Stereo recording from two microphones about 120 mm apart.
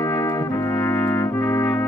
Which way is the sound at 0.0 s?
30° left (ahead or behind).